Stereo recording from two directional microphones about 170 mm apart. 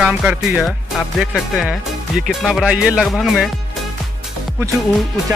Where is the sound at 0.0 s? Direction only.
5° right (ahead or behind).